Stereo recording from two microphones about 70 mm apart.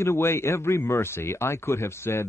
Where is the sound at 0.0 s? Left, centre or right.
Left.